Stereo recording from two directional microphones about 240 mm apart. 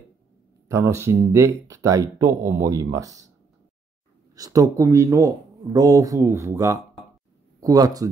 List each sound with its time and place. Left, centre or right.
0.7 s speech: centre
4.4 s speech: centre